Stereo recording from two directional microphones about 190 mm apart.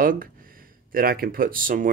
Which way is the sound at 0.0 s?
45° right (ahead or behind).